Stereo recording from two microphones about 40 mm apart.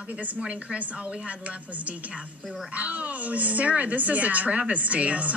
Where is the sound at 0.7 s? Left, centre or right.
Right.